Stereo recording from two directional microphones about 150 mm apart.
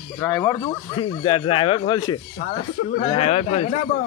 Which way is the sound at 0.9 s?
35° left (ahead or behind).